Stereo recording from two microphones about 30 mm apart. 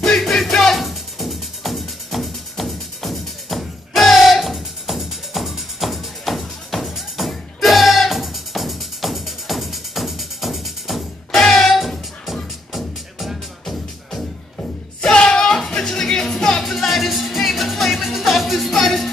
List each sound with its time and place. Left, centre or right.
0.0 s music: centre
15.0 s music: left
16.6 s music: centre